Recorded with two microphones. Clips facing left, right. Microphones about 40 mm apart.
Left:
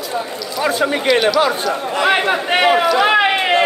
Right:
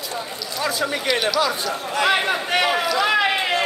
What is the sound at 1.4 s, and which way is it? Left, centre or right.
A man's voice, left.